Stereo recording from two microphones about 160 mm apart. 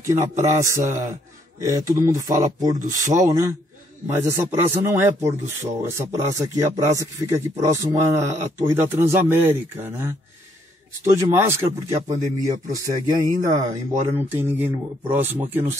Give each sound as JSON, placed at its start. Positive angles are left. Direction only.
{"t": 0.0, "sound": "a man's voice", "side_deg": -20}
{"t": 11.3, "sound": "speech", "side_deg": -15}
{"t": 13.3, "sound": "speech", "side_deg": -50}
{"t": 14.1, "sound": "a man's voice", "side_deg": -15}